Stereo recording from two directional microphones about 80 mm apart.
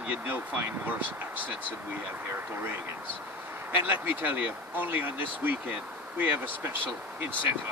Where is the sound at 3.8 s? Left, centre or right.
Right.